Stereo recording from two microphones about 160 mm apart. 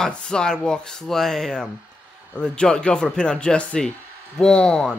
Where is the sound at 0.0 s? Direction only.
5° left (ahead or behind).